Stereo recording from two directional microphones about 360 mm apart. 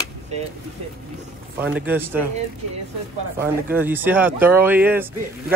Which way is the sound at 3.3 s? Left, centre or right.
Centre.